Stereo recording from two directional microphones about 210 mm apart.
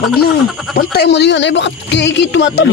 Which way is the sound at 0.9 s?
55° left (ahead or behind).